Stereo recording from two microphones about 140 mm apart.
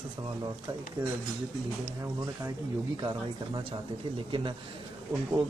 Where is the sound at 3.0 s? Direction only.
30° right (ahead or behind).